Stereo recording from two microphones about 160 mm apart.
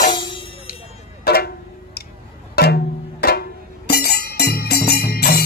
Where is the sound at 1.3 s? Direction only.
75° left (ahead or behind).